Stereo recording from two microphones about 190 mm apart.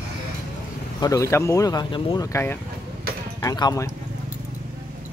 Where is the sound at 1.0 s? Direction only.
15° left (ahead or behind).